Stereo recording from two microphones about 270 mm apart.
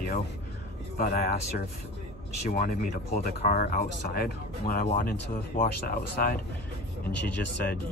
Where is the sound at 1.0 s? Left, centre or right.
Left.